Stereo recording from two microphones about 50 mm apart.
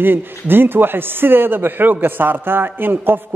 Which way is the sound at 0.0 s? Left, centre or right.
Right.